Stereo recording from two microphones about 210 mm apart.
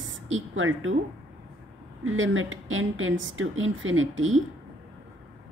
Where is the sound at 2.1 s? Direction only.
70° right (ahead or behind).